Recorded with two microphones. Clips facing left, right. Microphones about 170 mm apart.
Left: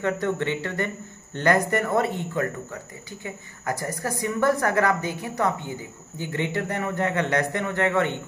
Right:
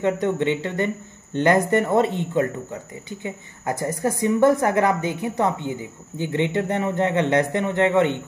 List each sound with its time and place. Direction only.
0.0 s a man's voice: 20° right (ahead or behind)